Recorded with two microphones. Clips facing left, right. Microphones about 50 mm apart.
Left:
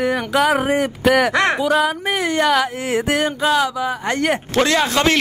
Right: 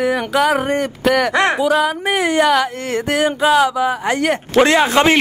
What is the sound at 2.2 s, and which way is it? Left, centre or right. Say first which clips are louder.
Speech: right 2 dB; centre.